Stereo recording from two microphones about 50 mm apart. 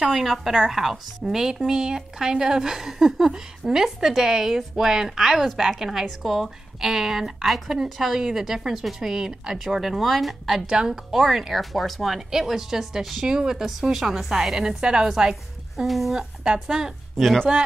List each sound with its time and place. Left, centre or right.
0.1 s speech: centre
10.7 s speech: centre
15.7 s speech: centre
16.4 s speech: centre